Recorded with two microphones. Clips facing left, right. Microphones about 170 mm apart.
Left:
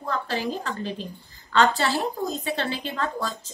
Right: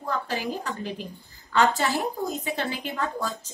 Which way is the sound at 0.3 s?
10° right (ahead or behind).